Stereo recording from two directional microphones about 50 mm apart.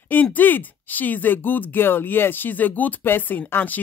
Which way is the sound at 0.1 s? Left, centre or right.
Left.